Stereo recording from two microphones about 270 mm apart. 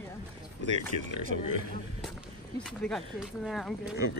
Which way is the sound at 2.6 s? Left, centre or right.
Centre.